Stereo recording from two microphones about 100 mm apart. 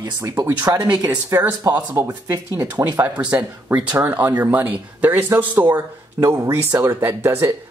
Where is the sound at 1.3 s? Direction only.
20° right (ahead or behind).